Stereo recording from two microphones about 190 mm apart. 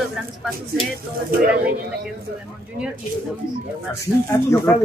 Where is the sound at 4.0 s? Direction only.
15° left (ahead or behind).